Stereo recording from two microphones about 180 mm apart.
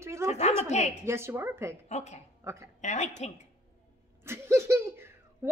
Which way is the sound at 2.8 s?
40° left (ahead or behind).